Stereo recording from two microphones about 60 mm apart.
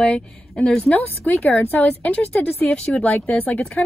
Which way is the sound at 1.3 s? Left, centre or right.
Left.